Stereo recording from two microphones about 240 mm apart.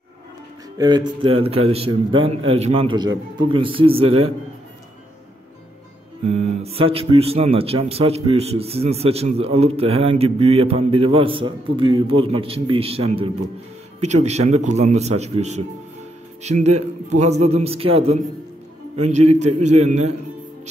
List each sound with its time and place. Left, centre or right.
0.7 s speech: centre
6.2 s speech: right